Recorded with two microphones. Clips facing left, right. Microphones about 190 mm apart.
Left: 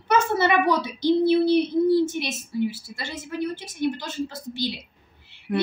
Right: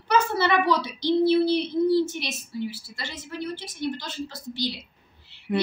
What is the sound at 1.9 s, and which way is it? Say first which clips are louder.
A woman's voice: left 2 dB; 20° left (ahead or behind).